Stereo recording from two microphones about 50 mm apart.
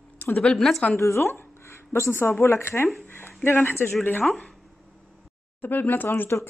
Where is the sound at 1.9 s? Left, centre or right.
Left.